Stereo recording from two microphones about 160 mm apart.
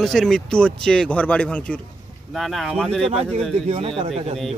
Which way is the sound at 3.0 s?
40° right (ahead or behind).